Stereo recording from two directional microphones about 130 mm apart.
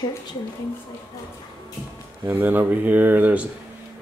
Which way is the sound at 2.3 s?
15° right (ahead or behind).